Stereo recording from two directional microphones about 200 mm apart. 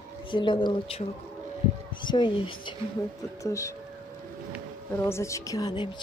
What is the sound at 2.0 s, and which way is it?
A woman's voice, 20° left (ahead or behind).